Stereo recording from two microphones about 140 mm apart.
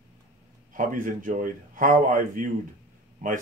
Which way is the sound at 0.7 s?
70° right (ahead or behind).